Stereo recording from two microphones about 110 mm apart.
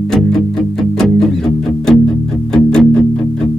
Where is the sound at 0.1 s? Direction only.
5° left (ahead or behind).